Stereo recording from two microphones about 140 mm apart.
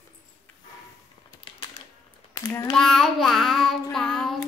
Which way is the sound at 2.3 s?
25° left (ahead or behind).